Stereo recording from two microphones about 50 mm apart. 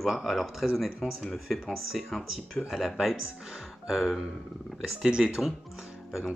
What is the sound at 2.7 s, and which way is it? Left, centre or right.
Speech, centre.